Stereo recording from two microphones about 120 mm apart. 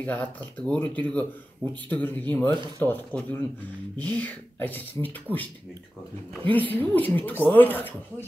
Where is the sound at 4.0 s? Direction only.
15° left (ahead or behind).